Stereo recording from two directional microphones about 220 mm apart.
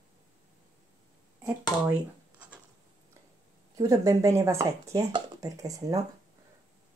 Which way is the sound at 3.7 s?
15° right (ahead or behind).